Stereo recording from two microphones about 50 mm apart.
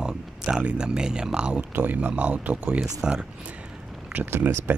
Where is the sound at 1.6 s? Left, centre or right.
Right.